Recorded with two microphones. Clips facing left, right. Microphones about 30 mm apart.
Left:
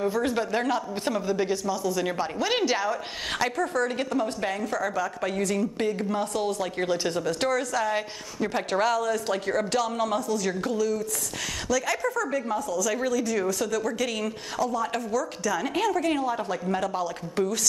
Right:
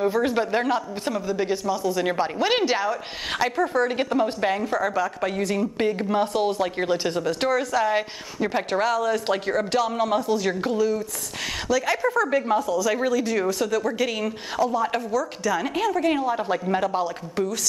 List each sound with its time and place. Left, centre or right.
0.0 s speech: centre
1.0 s a woman's voice: centre
1.5 s speech: centre
5.8 s speech: right
6.8 s speech: centre
10.2 s speech: right
12.2 s a woman's voice: right
12.9 s speech: right
17.4 s a woman's voice: centre